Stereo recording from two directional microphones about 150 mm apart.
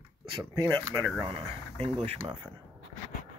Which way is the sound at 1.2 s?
40° right (ahead or behind).